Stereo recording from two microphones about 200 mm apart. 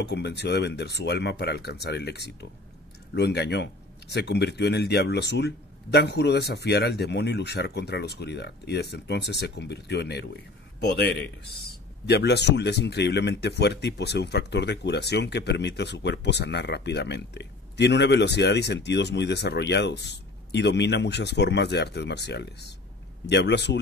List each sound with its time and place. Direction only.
0.0 s speech: 60° left (ahead or behind)